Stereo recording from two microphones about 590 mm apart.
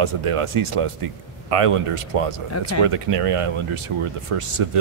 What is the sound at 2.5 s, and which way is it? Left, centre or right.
Speech, left.